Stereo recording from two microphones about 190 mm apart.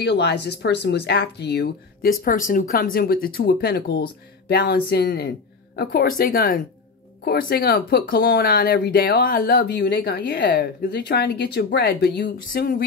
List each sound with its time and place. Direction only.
0.0 s speech: 60° left (ahead or behind)
2.2 s speech: 45° left (ahead or behind)